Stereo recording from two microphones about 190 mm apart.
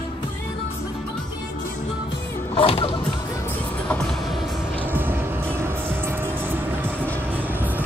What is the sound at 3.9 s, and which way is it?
Vehicle, 5° left (ahead or behind).